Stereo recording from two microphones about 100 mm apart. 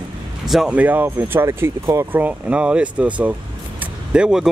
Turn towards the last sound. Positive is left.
turn(degrees=-5)  # may be behind; listen again after turning